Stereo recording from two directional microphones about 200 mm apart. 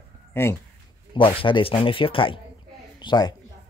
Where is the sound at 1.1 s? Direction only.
25° left (ahead or behind).